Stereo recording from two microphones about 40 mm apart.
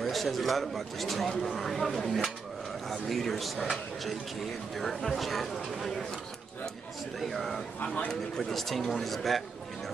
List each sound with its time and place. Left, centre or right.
0.0 s speech: centre
7.2 s speech: centre
7.8 s a man's voice: left
8.1 s speech: centre